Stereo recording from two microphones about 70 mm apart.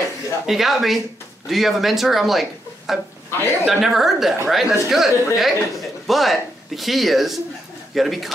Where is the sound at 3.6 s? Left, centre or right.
Centre.